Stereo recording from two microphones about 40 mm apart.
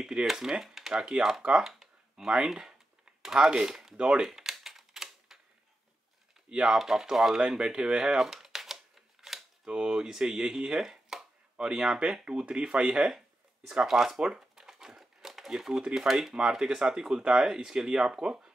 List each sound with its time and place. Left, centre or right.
0.0 s speech: centre
1.6 s a sound: centre
3.9 s speech: centre
4.3 s typewriter: centre
6.5 s speech: centre
9.7 s speech: right
12.8 s speech: centre
14.2 s crumpling: centre
15.9 s speech: centre
16.3 s speech: centre